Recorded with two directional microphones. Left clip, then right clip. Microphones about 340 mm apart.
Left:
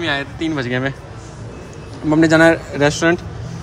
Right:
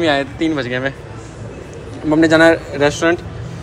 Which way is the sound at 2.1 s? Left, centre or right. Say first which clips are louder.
Right 1 dB; centre.